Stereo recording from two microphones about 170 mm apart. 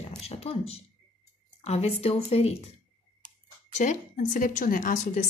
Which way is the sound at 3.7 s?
45° left (ahead or behind).